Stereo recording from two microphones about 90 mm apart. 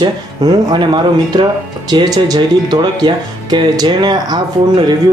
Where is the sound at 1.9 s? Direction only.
50° right (ahead or behind).